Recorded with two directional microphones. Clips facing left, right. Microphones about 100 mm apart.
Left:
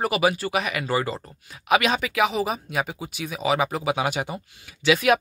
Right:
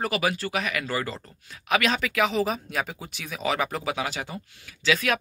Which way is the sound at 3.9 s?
20° left (ahead or behind).